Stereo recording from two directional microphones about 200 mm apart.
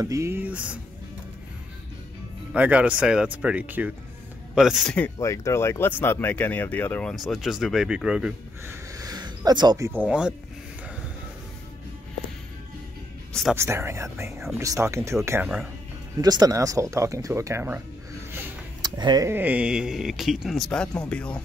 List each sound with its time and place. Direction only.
0.0 s speech: 15° right (ahead or behind)
2.5 s speech: 5° right (ahead or behind)
8.9 s a sound: 20° right (ahead or behind)
10.0 s speech: 5° right (ahead or behind)
13.3 s speech: centre (ahead or behind)
13.6 s speech: 10° right (ahead or behind)
15.4 s speech: 5° right (ahead or behind)
16.2 s speech: 20° right (ahead or behind); by 21.4 s 5° left (ahead or behind)